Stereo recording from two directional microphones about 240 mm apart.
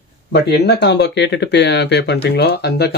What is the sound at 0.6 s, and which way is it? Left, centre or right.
Speech, left.